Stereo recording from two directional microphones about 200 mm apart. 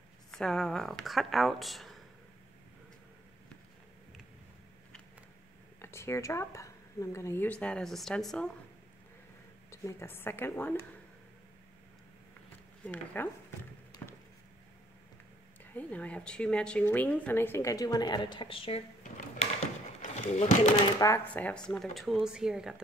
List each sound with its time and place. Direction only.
0.3 s a woman's voice: 5° left (ahead or behind)
5.8 s speech: 15° left (ahead or behind)
9.7 s a woman's voice: 15° left (ahead or behind)
12.8 s a woman's voice: 10° left (ahead or behind)
13.9 s a sound: 20° left (ahead or behind)
15.6 s a woman's voice: 10° left (ahead or behind); by 18.9 s 30° left (ahead or behind)
20.0 s a sound: 35° left (ahead or behind)
21.0 s a woman's voice: 10° left (ahead or behind)